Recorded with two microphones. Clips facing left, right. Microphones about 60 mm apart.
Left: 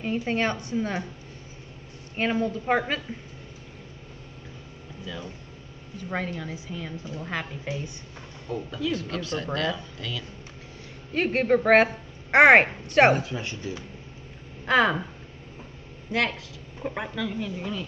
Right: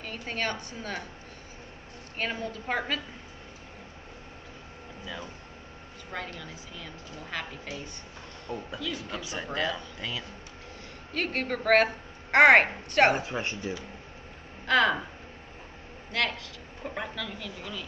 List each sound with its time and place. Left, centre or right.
0.0 s a woman's voice: left
2.1 s a woman's voice: left
6.0 s a woman's voice: left
8.5 s speech: centre
11.1 s a woman's voice: left
13.1 s speech: right
14.7 s a woman's voice: centre
16.1 s speech: centre